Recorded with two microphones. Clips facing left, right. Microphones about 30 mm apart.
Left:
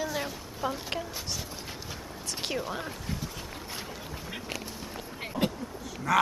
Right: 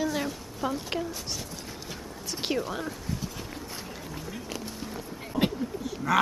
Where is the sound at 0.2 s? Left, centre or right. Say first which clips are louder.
Right 2 dB; centre.